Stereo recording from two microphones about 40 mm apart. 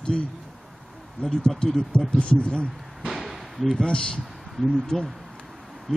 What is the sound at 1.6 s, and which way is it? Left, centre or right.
Speech, centre.